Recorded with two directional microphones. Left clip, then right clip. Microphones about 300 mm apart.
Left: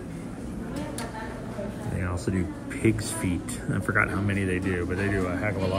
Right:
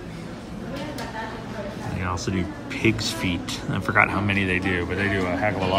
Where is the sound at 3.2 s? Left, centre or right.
Centre.